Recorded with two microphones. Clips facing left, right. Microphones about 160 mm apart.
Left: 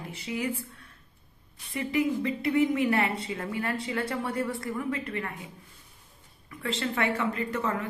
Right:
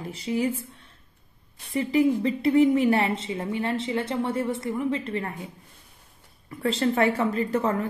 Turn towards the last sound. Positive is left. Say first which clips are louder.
# right 6 dB
turn(degrees=-35)  # may be behind; listen again after turning